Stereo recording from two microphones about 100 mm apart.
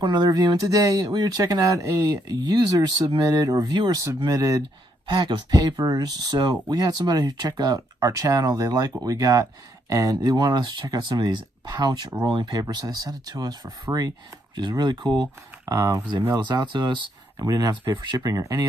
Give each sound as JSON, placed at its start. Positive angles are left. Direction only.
{"t": 0.0, "sound": "speech", "side_deg": -45}
{"t": 15.6, "sound": "speech", "side_deg": -35}
{"t": 16.4, "sound": "speech", "side_deg": -50}